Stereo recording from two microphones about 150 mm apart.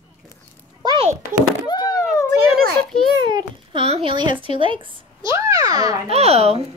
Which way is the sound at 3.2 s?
30° right (ahead or behind).